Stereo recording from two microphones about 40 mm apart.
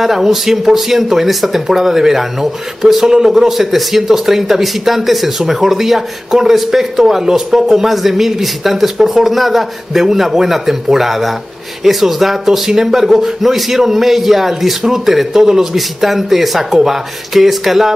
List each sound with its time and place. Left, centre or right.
0.0 s speech: centre